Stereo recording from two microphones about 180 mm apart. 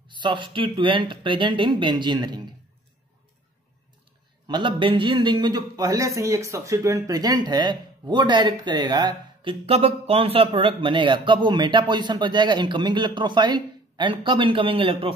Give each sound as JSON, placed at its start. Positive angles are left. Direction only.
{"t": 0.1, "sound": "a man's voice", "side_deg": -25}
{"t": 4.5, "sound": "a man's voice", "side_deg": -25}